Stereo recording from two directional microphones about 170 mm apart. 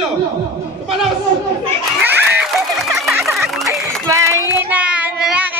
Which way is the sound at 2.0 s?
10° right (ahead or behind).